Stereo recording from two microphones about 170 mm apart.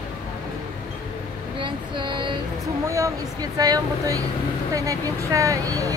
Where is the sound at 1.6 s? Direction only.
30° right (ahead or behind).